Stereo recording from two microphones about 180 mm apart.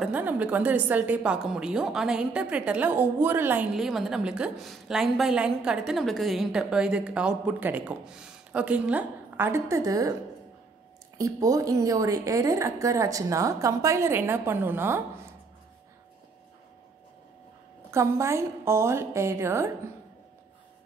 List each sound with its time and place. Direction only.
0.0 s a woman's voice: 10° right (ahead or behind)
11.1 s a woman's voice: 20° right (ahead or behind)
17.9 s a woman's voice: 15° right (ahead or behind)